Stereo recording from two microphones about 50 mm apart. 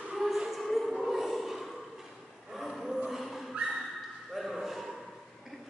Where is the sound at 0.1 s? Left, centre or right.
Centre.